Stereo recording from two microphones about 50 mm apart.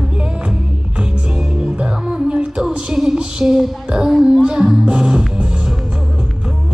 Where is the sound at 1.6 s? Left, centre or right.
Centre.